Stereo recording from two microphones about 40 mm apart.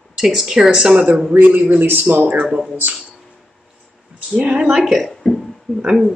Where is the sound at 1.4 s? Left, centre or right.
Right.